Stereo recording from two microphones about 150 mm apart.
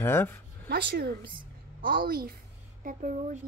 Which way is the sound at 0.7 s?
90° right.